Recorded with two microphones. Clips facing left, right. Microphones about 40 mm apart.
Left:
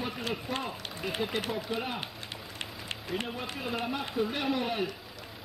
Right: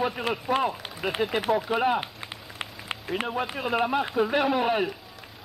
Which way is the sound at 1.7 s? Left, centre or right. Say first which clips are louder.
Right 11 dB; right.